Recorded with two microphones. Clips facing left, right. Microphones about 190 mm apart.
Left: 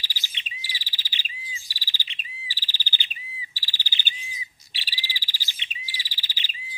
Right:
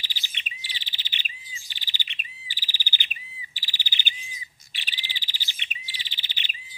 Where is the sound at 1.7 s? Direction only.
20° right (ahead or behind).